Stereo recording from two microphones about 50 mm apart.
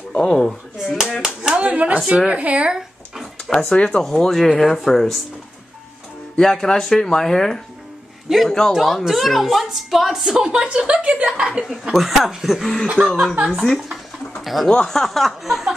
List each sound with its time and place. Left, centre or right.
0.1 s a woman's voice: left
0.8 s clapping: centre
1.5 s clapping: right
2.0 s speech: centre
3.6 s speech: left
4.0 s a woman's voice: centre
6.3 s a woman's voice: centre
10.5 s speech: centre
11.9 s a woman's voice: centre
14.7 s a woman's voice: centre